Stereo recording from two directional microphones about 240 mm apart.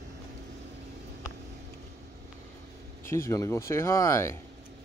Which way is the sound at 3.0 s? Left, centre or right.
Centre.